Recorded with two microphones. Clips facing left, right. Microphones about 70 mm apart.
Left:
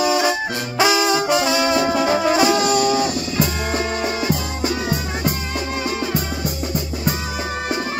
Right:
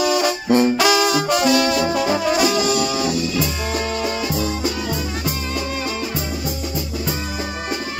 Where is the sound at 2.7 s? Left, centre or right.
Left.